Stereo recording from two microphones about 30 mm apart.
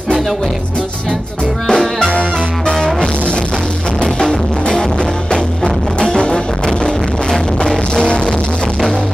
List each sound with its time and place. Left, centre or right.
1.7 s music: centre
2.6 s music: left
5.9 s music: left
7.9 s music: left